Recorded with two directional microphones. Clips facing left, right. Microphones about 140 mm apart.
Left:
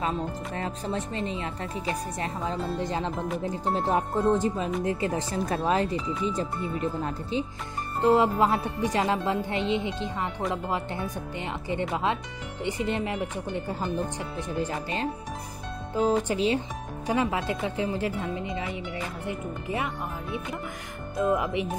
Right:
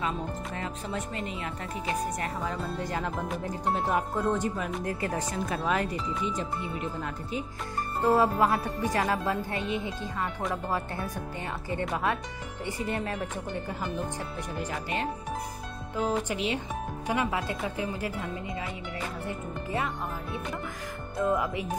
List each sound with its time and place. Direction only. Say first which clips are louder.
0.6 s speech: left 5 dB; 30° left (ahead or behind); by 13.3 s 15° left (ahead or behind)
14.6 s speech: left 2 dB; 30° left (ahead or behind)
16.3 s speech: left 5 dB; 30° left (ahead or behind); by 19.9 s 15° left (ahead or behind)
21.2 s speech: left 2 dB; 20° left (ahead or behind)